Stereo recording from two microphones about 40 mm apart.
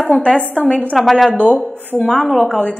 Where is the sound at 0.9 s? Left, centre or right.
Centre.